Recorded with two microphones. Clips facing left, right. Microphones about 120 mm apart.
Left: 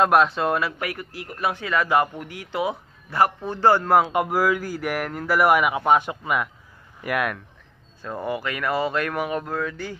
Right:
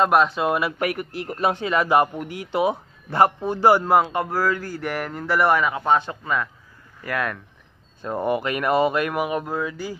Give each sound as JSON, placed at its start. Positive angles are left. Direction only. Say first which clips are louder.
{"t": 0.0, "sound": "speech", "louder": "even", "side_deg": 0}
{"t": 0.7, "sound": "a man's voice", "louder": "right 6 dB", "side_deg": -25}
{"t": 3.4, "sound": "speech", "louder": "right 2 dB", "side_deg": -10}
{"t": 4.1, "sound": "speech", "louder": "left 2 dB", "side_deg": 15}
{"t": 8.0, "sound": "speech", "louder": "right 4 dB", "side_deg": -20}